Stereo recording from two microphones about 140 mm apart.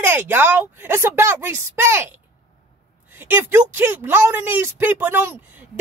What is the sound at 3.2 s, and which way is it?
Speech, 15° right (ahead or behind).